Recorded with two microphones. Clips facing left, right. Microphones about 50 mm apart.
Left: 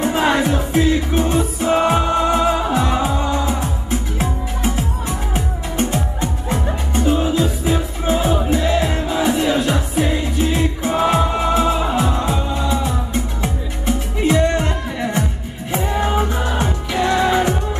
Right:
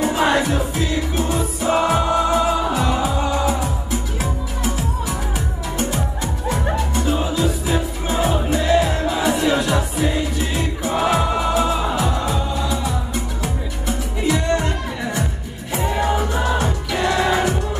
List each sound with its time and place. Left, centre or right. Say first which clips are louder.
0.0 s music: left 1 dB; left
15.7 s music: left 1 dB; left
16.9 s music: left 2 dB; centre